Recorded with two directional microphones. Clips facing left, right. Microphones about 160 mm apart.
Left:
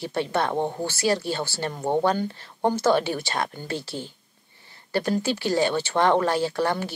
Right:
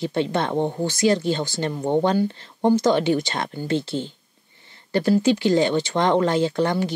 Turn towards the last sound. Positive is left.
turn(degrees=-20)  # may be behind; listen again after turning